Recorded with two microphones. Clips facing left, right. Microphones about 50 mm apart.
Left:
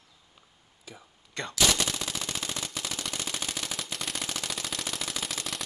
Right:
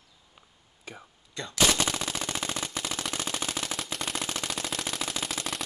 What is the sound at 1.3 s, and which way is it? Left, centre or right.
Machine gun, left.